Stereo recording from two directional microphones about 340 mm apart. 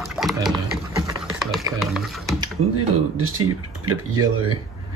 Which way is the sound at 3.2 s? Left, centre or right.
Right.